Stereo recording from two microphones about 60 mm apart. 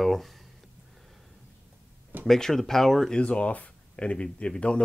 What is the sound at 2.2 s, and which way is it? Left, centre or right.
Speech, centre.